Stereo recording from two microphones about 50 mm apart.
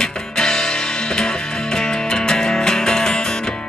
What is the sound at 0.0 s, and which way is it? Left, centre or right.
Music, centre.